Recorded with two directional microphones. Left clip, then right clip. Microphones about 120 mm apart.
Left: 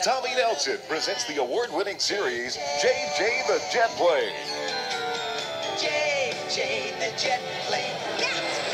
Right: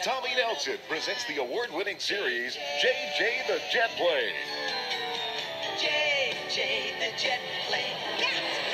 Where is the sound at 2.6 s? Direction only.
40° left (ahead or behind).